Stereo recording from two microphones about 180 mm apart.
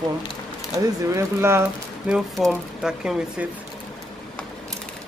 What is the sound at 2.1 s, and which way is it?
Speech, centre (ahead or behind).